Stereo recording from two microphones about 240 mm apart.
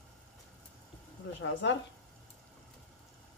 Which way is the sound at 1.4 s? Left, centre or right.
Left.